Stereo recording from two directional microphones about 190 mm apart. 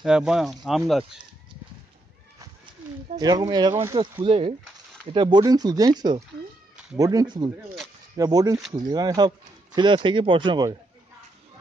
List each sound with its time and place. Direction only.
0.0 s speech: 5° right (ahead or behind)
3.2 s speech: 20° right (ahead or behind)
4.0 s speech: 30° right (ahead or behind)